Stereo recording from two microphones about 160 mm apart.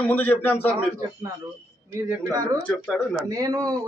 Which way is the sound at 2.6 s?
Centre (ahead or behind).